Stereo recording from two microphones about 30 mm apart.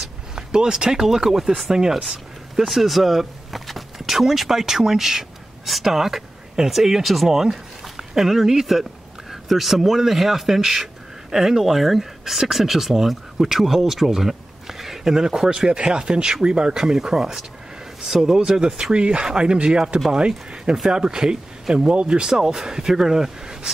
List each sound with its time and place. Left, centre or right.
0.4 s speech: right
2.0 s speech: centre
7.2 s a man's voice: centre
18.8 s speech: right
22.3 s speech: centre